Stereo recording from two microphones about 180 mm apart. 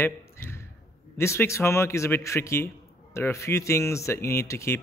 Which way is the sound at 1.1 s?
15° left (ahead or behind).